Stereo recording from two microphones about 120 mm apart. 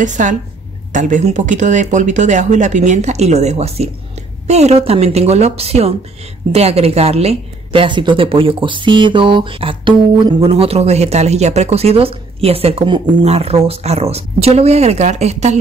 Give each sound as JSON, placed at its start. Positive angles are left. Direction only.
{"t": 0.0, "sound": "speech", "side_deg": -90}
{"t": 10.5, "sound": "speech", "side_deg": -60}
{"t": 12.8, "sound": "speech", "side_deg": -40}
{"t": 13.2, "sound": "speech", "side_deg": -60}